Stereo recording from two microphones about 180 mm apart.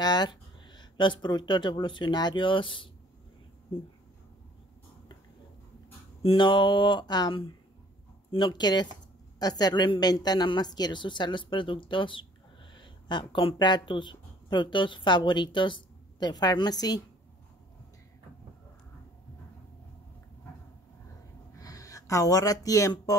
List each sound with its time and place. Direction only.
0.0 s speech: 25° left (ahead or behind)
6.2 s a woman's voice: 25° left (ahead or behind)
21.5 s speech: 20° left (ahead or behind)